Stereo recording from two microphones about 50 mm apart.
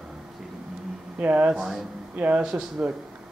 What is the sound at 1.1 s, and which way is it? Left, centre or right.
Speech, right.